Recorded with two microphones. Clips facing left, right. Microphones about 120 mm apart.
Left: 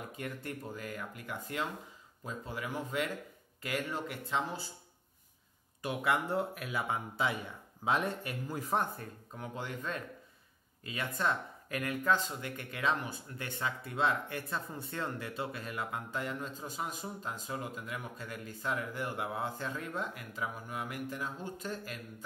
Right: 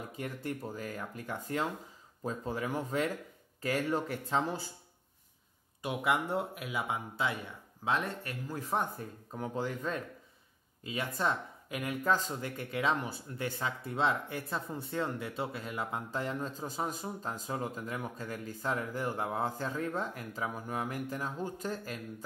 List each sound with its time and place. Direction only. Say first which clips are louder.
0.2 s speech: right 4 dB; 25° right (ahead or behind)
5.8 s speech: right 1 dB; 20° right (ahead or behind)
8.0 s speech: left 2 dB; 15° left (ahead or behind)
8.9 s speech: right 3 dB; 25° right (ahead or behind)
9.6 s speech: right 4 dB; 40° right (ahead or behind)
10.8 s speech: right 2 dB; 25° right (ahead or behind)
12.0 s speech: right 1 dB; 40° right (ahead or behind)